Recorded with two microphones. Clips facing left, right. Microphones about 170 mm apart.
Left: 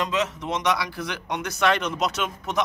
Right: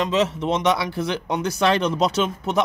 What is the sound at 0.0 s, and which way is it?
Speech, 30° right (ahead or behind).